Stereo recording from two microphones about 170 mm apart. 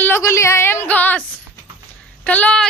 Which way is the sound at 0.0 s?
15° left (ahead or behind).